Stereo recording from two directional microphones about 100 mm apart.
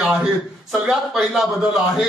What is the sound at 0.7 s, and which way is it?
A man's voice, centre (ahead or behind).